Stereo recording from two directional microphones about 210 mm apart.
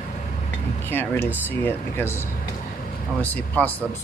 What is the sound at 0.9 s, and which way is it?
Speech, 10° left (ahead or behind).